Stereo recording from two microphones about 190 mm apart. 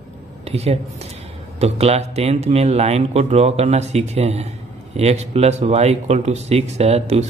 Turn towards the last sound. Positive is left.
turn(degrees=-35)  # may be behind; listen again after turning